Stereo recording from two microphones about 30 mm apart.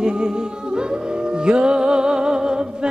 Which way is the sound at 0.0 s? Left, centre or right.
Right.